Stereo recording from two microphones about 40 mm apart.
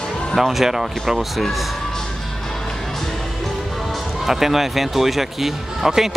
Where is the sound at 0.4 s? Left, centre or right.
Centre.